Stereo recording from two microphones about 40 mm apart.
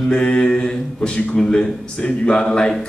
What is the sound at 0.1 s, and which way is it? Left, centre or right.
A man's voice, left.